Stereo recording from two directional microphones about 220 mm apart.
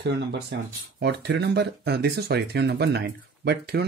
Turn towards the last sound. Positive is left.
turn(degrees=-50)  # may be behind; listen again after turning